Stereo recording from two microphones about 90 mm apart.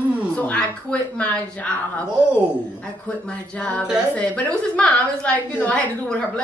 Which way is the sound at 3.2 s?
10° left (ahead or behind).